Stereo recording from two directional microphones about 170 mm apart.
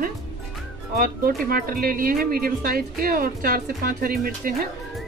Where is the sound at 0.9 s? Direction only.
60° right (ahead or behind).